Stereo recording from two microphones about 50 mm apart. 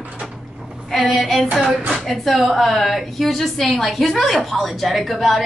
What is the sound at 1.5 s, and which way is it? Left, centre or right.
Music, centre.